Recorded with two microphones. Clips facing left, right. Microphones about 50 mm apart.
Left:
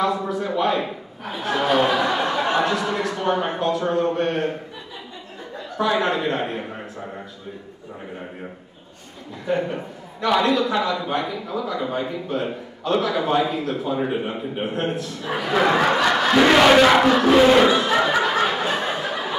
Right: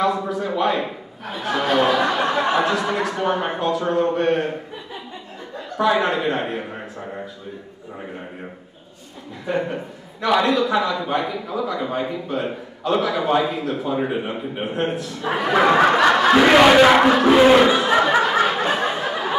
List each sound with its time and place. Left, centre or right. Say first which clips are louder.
0.0 s a man's voice: right 1 dB; centre
5.8 s a man's voice: right 2 dB; centre
9.5 s a man's voice: even; centre
15.3 s speech: right 3 dB; centre
16.0 s battle cry: right 4 dB; right
16.3 s speech: even; centre
18.6 s a sound: right 2 dB; centre